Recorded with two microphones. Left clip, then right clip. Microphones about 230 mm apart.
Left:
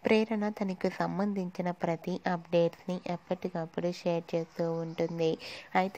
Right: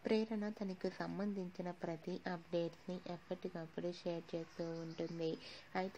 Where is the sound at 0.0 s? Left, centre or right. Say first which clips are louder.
Left 11 dB; left.